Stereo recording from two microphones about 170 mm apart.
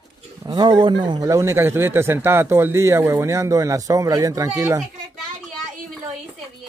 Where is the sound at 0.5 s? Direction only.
25° right (ahead or behind).